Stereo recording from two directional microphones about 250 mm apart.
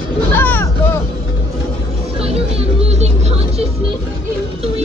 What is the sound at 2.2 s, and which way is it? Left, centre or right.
Music, right.